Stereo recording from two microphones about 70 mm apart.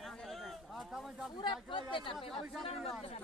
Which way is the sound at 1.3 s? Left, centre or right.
Left.